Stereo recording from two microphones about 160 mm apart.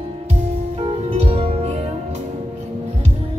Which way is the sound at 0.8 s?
40° right (ahead or behind).